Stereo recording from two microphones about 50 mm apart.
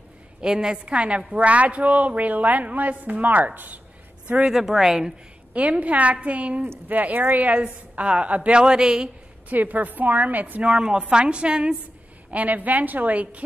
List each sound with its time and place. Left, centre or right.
0.4 s a woman's voice: centre; by 3.8 s right
4.5 s a woman's voice: centre
5.5 s a woman's voice: right
9.5 s a woman's voice: right
12.3 s a woman's voice: right